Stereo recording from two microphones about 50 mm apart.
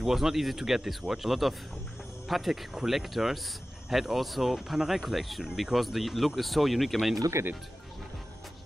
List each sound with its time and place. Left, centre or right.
0.0 s speech: centre
7.4 s speech: right